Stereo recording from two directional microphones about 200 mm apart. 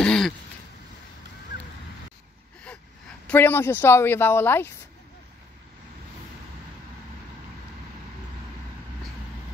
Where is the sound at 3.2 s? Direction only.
10° left (ahead or behind).